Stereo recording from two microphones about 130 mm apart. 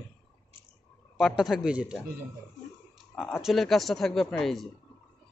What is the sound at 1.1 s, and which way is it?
Speech, centre (ahead or behind).